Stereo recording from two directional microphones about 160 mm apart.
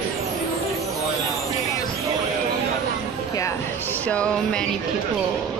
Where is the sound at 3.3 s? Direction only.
20° left (ahead or behind).